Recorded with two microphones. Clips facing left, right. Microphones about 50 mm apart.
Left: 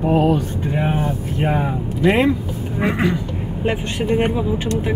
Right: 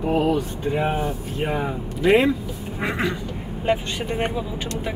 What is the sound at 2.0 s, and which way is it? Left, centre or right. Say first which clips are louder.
Speech: left 1 dB; left.